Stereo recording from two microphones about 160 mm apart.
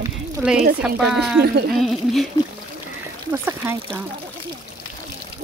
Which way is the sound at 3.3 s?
15° right (ahead or behind).